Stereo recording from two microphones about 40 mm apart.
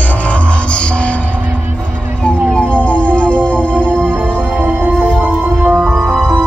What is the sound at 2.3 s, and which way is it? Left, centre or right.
Music, left.